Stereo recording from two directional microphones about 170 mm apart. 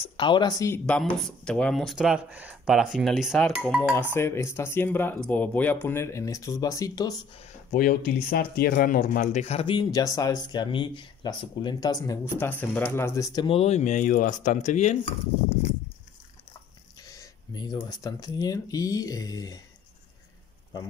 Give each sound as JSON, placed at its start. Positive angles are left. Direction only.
{"t": 0.0, "sound": "speech", "side_deg": 30}
{"t": 0.8, "sound": "speech", "side_deg": 5}
{"t": 4.1, "sound": "speech", "side_deg": 15}
{"t": 7.7, "sound": "speech", "side_deg": 55}
{"t": 13.5, "sound": "speech", "side_deg": 40}
{"t": 17.0, "sound": "speech", "side_deg": 20}